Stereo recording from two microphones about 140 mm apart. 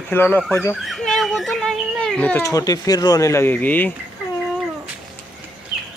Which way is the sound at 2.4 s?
25° left (ahead or behind).